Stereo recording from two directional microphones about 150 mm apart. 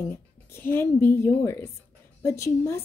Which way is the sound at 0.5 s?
15° left (ahead or behind).